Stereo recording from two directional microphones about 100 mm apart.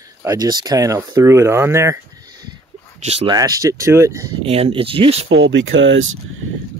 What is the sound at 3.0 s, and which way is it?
Speech, 90° right.